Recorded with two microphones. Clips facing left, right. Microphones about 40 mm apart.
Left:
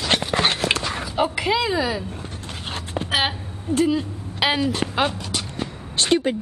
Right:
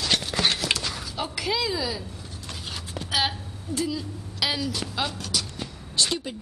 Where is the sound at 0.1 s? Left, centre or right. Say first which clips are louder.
Left 5 dB; left.